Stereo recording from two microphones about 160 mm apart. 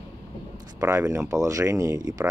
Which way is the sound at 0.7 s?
20° right (ahead or behind).